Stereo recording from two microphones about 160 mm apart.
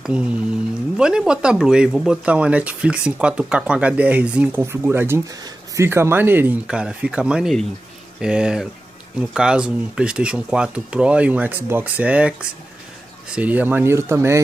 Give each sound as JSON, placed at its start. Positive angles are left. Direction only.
{"t": 0.0, "sound": "speech", "side_deg": -5}